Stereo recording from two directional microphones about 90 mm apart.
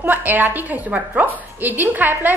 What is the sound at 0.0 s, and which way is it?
A woman's voice, 20° right (ahead or behind).